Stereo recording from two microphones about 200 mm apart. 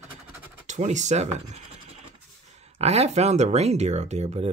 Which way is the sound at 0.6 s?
35° right (ahead or behind).